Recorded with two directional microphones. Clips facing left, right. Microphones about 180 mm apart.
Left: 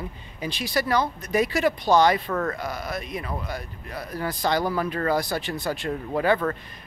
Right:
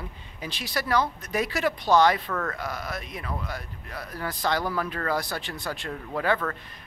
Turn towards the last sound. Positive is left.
turn(degrees=10)  # may be behind; listen again after turning